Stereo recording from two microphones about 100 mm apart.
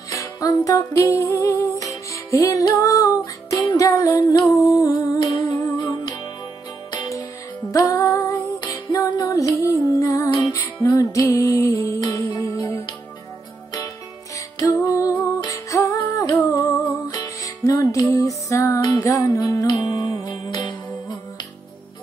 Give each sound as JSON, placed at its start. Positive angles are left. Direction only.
{"t": 0.1, "sound": "music", "side_deg": 35}
{"t": 14.6, "sound": "music", "side_deg": 35}